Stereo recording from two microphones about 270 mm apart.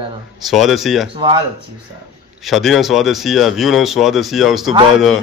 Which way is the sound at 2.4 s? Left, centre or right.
Centre.